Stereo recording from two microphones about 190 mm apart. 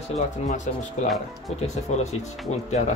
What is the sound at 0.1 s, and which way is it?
Speech, 35° left (ahead or behind).